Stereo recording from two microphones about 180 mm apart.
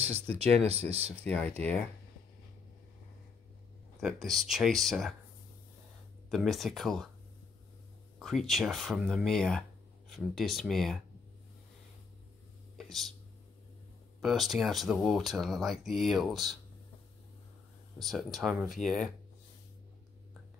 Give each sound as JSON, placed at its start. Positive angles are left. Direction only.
{"t": 0.0, "sound": "speech", "side_deg": -35}
{"t": 1.2, "sound": "speech", "side_deg": 5}
{"t": 4.0, "sound": "speech", "side_deg": 0}
{"t": 6.3, "sound": "speech", "side_deg": 0}
{"t": 8.2, "sound": "speech", "side_deg": 0}
{"t": 12.7, "sound": "a sound", "side_deg": 0}
{"t": 14.2, "sound": "speech", "side_deg": 0}
{"t": 17.9, "sound": "speech", "side_deg": 0}